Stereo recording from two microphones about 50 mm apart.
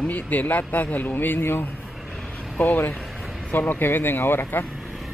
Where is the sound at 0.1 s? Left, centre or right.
Left.